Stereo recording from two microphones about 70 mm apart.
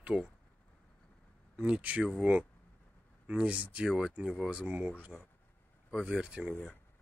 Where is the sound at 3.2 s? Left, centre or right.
Centre.